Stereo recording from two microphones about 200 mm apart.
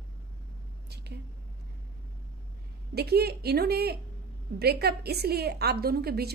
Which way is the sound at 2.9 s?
55° right (ahead or behind).